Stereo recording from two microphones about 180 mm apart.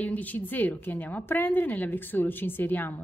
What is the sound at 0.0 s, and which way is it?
A woman's voice, 10° left (ahead or behind).